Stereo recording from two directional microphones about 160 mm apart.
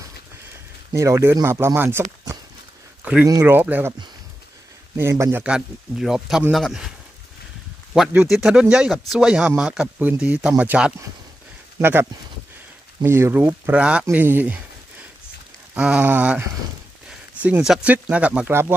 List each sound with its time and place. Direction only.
0.9 s speech: 20° right (ahead or behind)
3.3 s speech: 25° right (ahead or behind)
3.5 s speech: 10° right (ahead or behind)
4.9 s speech: 15° right (ahead or behind)
7.9 s speech: 5° right (ahead or behind)